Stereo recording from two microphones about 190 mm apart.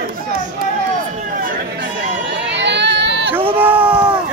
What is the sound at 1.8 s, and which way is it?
Chatter, 65° right (ahead or behind).